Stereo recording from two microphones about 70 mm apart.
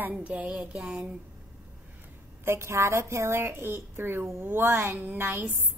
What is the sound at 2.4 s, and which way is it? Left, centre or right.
A woman's voice, right.